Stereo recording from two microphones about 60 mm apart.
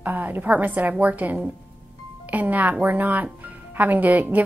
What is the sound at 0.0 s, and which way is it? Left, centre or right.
A woman's voice, right.